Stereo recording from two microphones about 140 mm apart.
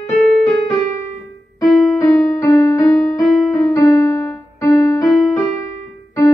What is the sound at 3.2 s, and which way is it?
Keyboard, centre (ahead or behind).